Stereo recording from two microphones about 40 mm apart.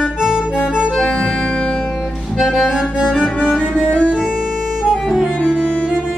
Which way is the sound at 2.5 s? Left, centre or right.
Centre.